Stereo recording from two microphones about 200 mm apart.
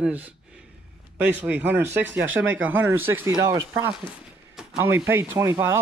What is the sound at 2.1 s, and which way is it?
Speech, 75° right (ahead or behind).